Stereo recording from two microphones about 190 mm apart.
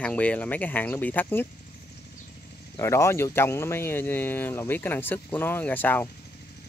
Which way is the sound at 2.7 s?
15° left (ahead or behind).